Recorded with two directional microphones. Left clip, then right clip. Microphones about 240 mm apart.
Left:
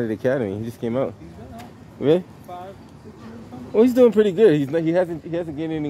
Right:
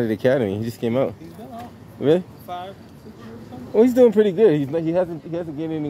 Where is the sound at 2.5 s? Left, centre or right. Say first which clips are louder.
Right 5 dB; centre.